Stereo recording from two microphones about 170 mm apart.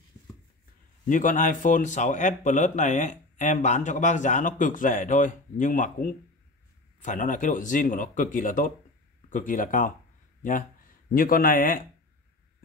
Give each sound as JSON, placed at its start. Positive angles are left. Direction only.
{"t": 1.0, "sound": "speech", "side_deg": 50}
{"t": 11.1, "sound": "speech", "side_deg": 55}